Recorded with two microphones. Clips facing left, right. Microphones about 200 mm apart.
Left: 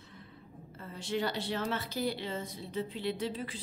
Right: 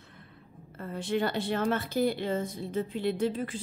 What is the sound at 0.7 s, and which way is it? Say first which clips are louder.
Speech: right 5 dB; 55° right (ahead or behind).